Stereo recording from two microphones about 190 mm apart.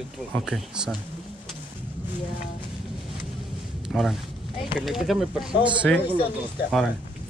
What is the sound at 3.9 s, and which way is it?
Speech, centre (ahead or behind).